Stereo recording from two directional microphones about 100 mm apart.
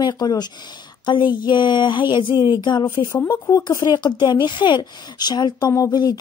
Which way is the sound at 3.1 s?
35° left (ahead or behind).